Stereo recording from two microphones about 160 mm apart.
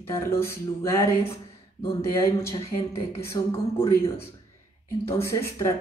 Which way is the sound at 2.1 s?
15° left (ahead or behind).